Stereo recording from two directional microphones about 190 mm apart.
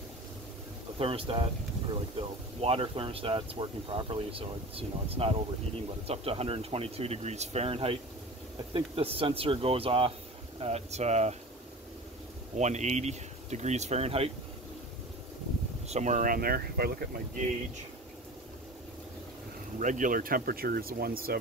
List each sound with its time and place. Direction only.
0.9 s speech: 30° right (ahead or behind)
2.6 s speech: 30° right (ahead or behind)
12.5 s speech: 35° right (ahead or behind)
15.9 s speech: 40° right (ahead or behind)
19.8 s speech: 40° right (ahead or behind)